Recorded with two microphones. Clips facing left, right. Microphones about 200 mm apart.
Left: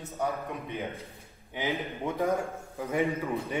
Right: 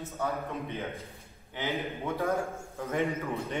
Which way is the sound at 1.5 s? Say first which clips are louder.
Left 1 dB; 15° left (ahead or behind).